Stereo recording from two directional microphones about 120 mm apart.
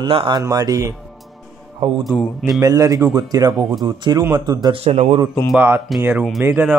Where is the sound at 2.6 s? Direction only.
30° right (ahead or behind).